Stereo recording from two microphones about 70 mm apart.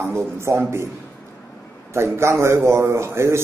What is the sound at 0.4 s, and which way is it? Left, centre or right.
Speech, right.